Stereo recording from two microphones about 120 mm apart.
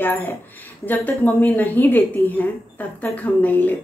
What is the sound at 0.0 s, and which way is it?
Speech, 15° left (ahead or behind).